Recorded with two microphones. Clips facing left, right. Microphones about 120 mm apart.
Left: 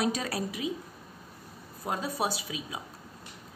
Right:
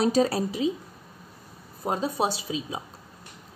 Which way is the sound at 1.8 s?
25° right (ahead or behind).